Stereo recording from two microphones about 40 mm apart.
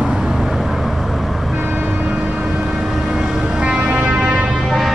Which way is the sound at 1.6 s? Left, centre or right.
Right.